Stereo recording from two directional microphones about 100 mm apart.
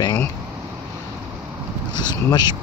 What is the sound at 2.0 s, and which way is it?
Speech, 45° left (ahead or behind).